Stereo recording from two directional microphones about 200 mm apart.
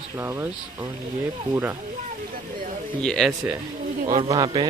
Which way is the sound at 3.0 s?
Centre (ahead or behind).